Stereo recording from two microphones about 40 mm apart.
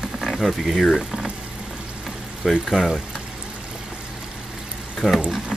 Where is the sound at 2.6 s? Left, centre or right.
Centre.